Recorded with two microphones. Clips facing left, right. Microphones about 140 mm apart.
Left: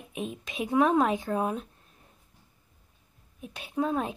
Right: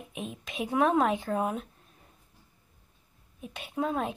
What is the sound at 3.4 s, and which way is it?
Speech, centre (ahead or behind).